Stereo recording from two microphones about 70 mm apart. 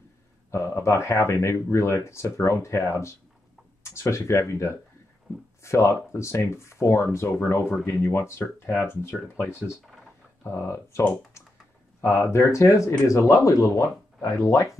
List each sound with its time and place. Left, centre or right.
0.5 s speech: left